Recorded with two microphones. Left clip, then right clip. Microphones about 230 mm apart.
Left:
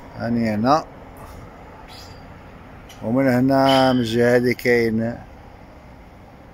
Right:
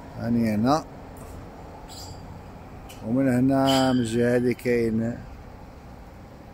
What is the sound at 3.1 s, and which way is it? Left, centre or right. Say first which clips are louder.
Speech: left 5 dB; left.